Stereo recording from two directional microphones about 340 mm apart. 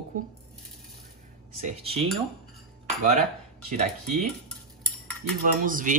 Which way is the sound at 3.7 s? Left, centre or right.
Right.